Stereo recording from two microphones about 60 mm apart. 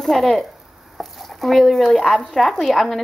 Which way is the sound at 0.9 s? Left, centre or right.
Centre.